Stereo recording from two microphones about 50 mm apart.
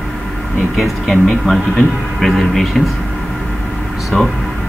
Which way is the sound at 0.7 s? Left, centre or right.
Centre.